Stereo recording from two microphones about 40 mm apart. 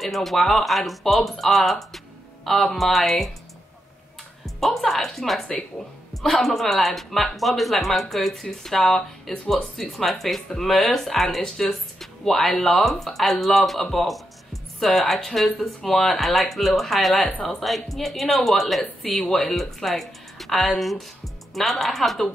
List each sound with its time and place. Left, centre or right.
0.0 s speech: centre
4.6 s speech: centre
13.9 s music: centre
15.1 s speech: centre
19.0 s speech: centre
19.3 s speech: centre